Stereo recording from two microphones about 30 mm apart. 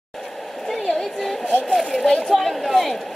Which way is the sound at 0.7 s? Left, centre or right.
Centre.